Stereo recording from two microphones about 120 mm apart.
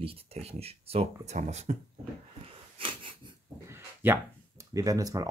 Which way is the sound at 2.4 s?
45° right (ahead or behind).